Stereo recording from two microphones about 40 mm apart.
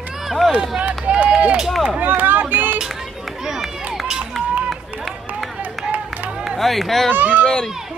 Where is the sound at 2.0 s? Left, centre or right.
Right.